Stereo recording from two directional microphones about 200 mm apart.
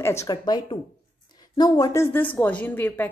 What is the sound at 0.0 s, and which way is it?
A woman's voice, 15° left (ahead or behind).